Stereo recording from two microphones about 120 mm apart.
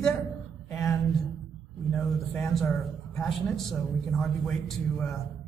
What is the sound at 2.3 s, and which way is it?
Speech, 5° left (ahead or behind).